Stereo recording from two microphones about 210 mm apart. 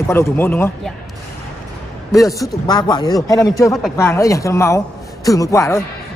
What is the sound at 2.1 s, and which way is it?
A man's voice, 15° left (ahead or behind).